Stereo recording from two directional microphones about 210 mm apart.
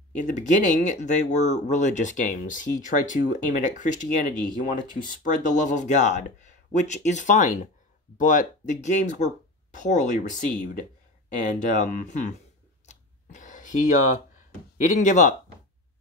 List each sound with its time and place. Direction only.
0.1 s speech: 35° left (ahead or behind)
12.8 s scissors: 35° left (ahead or behind)
14.9 s speech: 35° left (ahead or behind)